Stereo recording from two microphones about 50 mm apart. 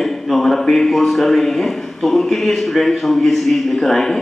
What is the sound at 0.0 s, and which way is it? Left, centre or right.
A man's voice, centre.